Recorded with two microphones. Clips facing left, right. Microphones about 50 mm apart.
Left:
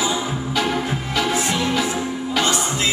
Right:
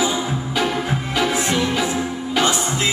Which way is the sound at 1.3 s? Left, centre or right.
Centre.